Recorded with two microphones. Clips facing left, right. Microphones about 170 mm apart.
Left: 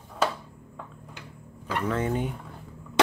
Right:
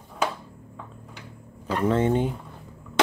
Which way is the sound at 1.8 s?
25° right (ahead or behind).